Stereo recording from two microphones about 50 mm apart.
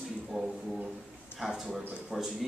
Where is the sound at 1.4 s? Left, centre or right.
Centre.